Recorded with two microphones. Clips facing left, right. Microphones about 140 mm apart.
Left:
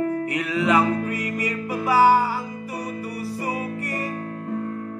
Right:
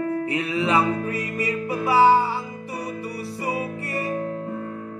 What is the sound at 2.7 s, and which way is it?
Music, 20° left (ahead or behind).